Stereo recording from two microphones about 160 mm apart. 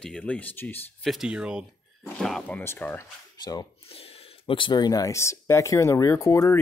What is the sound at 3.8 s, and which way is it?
Speech, 35° left (ahead or behind).